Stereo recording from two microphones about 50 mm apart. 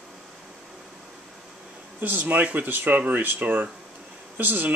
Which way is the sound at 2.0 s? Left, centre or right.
Right.